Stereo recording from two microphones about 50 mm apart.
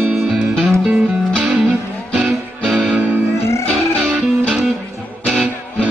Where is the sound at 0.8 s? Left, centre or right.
Right.